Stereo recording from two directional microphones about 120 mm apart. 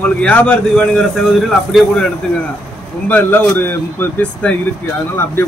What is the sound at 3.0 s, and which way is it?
A man's voice, 15° left (ahead or behind).